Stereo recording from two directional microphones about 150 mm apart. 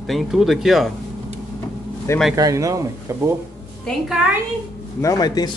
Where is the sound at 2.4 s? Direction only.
20° right (ahead or behind).